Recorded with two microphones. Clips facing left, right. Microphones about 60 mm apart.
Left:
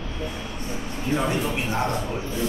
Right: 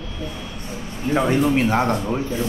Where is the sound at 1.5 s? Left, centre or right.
Right.